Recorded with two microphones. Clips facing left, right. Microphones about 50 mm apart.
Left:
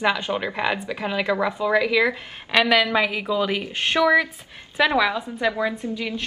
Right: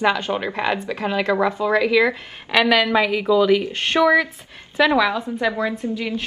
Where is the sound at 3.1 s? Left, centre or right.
Centre.